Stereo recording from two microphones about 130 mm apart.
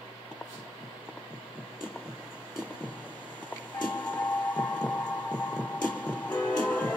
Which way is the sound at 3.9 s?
15° left (ahead or behind).